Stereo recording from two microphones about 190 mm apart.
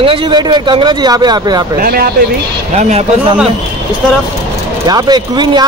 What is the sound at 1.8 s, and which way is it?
Speech, 50° right (ahead or behind).